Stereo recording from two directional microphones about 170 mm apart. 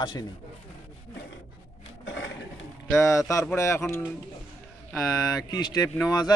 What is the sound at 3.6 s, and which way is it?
Speech, 15° left (ahead or behind).